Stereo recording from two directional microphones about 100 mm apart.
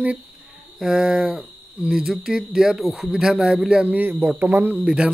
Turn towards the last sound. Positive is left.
turn(degrees=-10)  # may be behind; listen again after turning